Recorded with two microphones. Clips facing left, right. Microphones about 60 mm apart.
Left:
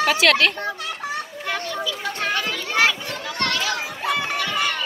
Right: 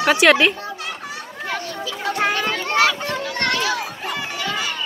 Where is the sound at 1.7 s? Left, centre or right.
Right.